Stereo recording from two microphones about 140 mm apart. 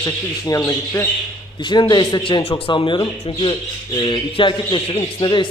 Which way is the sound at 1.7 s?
30° left (ahead or behind).